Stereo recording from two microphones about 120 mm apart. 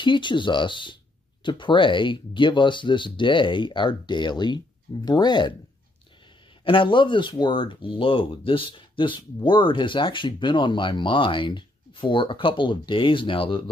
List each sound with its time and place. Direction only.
0.0 s speech: 40° left (ahead or behind)
6.6 s speech: 45° left (ahead or behind)